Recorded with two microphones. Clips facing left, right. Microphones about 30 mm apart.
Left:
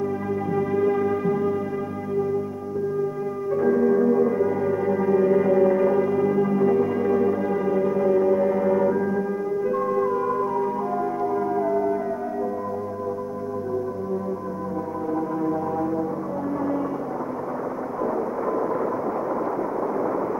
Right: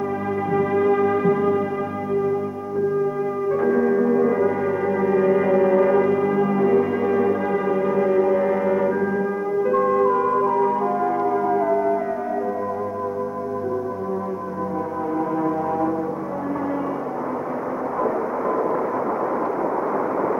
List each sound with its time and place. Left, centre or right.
0.5 s music: right
3.4 s music: right